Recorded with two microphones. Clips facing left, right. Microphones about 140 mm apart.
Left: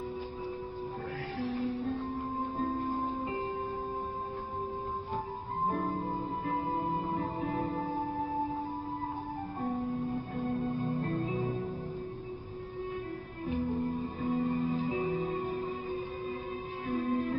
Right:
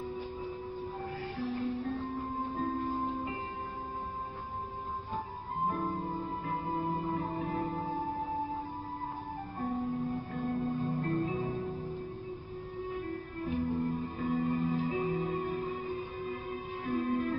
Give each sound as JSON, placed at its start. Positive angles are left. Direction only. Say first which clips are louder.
{"t": 2.6, "sound": "music", "louder": "left 1 dB", "side_deg": 20}
{"t": 5.7, "sound": "music", "louder": "left 2 dB", "side_deg": 50}
{"t": 6.8, "sound": "music", "louder": "left 1 dB", "side_deg": 25}
{"t": 10.1, "sound": "music", "louder": "left 1 dB", "side_deg": 20}
{"t": 13.5, "sound": "music", "louder": "even", "side_deg": 25}
{"t": 16.8, "sound": "music", "louder": "even", "side_deg": 25}